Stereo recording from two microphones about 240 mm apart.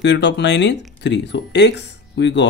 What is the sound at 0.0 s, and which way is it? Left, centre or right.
Speech, left.